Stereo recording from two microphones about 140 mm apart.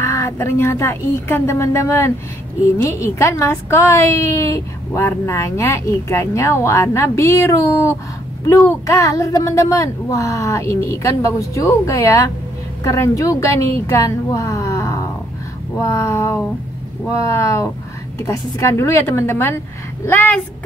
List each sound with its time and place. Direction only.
0.0 s a woman's voice: 20° left (ahead or behind)